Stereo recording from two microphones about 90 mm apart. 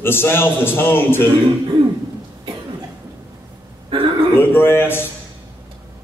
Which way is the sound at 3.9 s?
70° right (ahead or behind).